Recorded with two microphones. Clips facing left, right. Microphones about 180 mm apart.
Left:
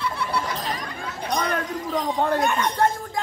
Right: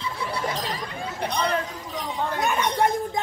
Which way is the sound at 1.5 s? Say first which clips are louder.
Left 3 dB; 65° left (ahead or behind).